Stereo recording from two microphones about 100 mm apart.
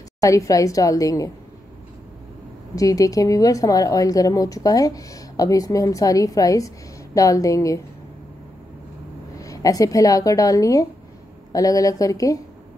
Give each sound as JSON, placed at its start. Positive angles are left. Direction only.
{"t": 0.2, "sound": "a woman's voice", "side_deg": 35}
{"t": 2.7, "sound": "a woman's voice", "side_deg": 35}
{"t": 9.4, "sound": "a woman's voice", "side_deg": 35}